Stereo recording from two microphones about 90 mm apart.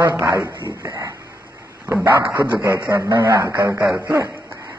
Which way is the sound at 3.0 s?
45° right (ahead or behind).